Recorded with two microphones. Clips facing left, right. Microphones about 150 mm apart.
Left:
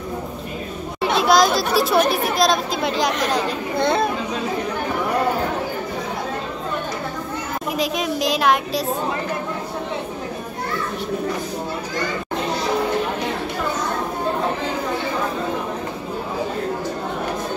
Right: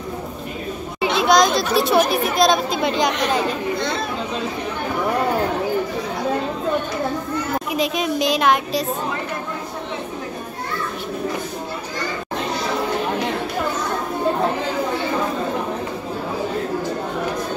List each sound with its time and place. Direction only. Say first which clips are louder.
1.0 s speech: even; centre (ahead or behind)
3.8 s speech: left 5 dB; 55° left (ahead or behind)
7.7 s speech: right 1 dB; centre (ahead or behind)